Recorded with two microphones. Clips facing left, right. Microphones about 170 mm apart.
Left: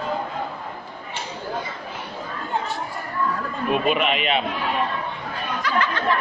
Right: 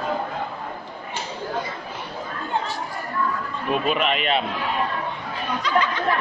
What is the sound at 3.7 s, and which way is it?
Speech, 5° left (ahead or behind).